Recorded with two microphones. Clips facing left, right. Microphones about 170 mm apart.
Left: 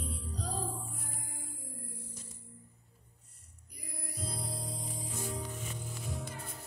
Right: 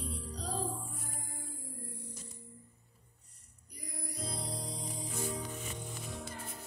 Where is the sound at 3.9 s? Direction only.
5° left (ahead or behind).